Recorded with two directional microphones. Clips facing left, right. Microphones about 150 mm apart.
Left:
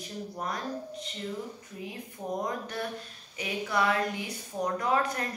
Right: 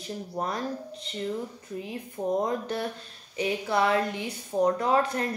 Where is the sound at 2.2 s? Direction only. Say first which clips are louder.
Right 8 dB; 40° right (ahead or behind).